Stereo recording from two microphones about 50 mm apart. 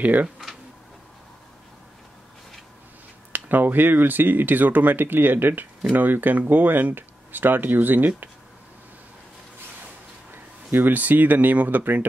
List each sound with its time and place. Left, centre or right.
0.0 s speech: right
3.3 s speech: right
10.3 s speech: right